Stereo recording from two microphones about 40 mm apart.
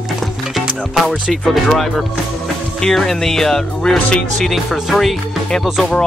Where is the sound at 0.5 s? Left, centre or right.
Centre.